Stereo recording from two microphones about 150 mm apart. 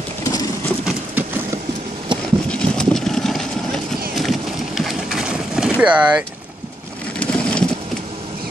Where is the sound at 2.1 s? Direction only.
30° right (ahead or behind).